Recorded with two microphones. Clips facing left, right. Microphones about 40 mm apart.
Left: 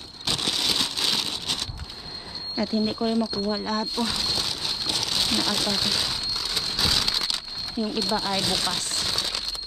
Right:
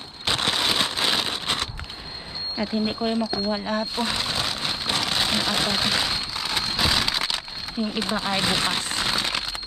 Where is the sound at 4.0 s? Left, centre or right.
Right.